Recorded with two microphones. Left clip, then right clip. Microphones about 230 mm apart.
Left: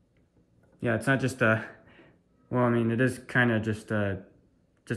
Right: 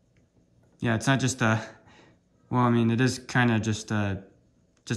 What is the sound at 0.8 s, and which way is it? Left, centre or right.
Speech, right.